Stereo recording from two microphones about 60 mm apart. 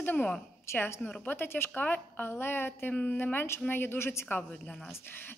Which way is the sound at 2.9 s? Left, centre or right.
Left.